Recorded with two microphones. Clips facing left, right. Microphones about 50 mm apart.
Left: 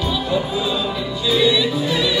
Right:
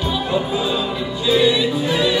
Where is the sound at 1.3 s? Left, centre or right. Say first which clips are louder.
Right 1 dB; right.